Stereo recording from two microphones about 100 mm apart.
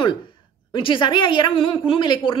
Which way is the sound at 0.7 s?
55° left (ahead or behind).